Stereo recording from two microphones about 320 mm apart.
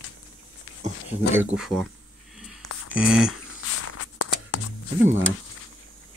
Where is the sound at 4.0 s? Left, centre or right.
Left.